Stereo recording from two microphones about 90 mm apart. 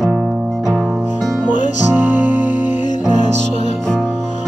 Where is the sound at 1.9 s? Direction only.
20° right (ahead or behind).